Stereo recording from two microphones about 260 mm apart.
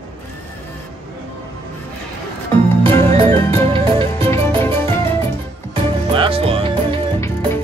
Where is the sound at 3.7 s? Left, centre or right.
Right.